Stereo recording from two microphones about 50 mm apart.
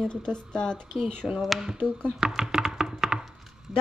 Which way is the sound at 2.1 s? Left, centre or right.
Centre.